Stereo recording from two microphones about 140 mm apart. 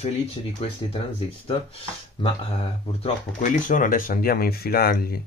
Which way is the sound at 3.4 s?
70° left (ahead or behind).